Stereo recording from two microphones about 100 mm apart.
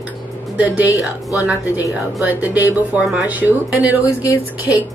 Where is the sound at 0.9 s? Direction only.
15° right (ahead or behind).